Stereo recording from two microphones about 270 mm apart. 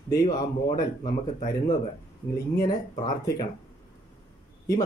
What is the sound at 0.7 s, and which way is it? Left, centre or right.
Speech, left.